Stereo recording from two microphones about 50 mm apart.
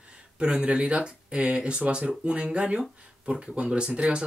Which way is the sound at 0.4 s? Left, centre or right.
Right.